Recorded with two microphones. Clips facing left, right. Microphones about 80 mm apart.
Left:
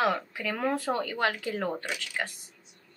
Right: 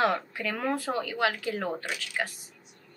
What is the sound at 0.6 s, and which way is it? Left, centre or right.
Speech, centre.